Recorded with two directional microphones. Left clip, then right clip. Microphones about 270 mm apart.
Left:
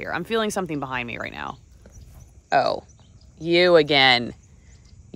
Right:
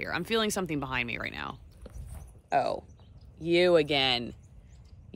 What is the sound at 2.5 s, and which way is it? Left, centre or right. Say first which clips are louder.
Speech: left 7 dB; left.